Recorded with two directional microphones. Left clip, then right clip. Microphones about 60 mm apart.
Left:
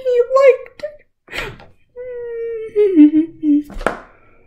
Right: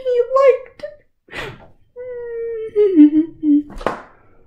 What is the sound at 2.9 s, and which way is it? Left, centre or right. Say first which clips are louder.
Humming: left 1 dB; centre.